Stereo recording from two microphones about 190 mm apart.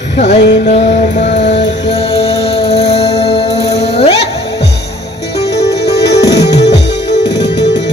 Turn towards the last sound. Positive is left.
turn(degrees=65)  # may be behind; listen again after turning